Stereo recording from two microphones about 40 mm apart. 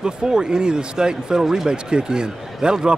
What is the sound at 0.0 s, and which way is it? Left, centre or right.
Speech, right.